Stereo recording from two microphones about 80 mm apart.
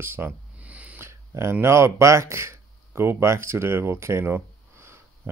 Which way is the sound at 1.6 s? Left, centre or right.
Right.